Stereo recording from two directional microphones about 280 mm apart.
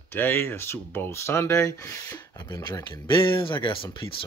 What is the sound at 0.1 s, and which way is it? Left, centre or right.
Speech, centre.